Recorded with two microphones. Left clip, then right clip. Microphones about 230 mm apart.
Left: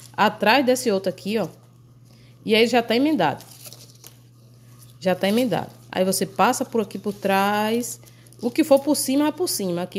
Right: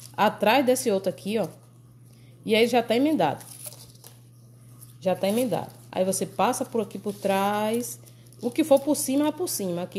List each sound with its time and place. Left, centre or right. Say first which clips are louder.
0.1 s a woman's voice: left 3 dB; centre
5.0 s a woman's voice: left 3 dB; centre